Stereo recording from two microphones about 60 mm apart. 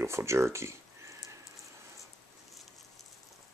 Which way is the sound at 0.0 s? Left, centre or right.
Right.